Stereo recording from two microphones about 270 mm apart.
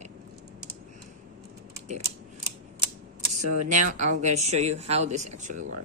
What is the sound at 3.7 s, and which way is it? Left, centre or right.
Speech, right.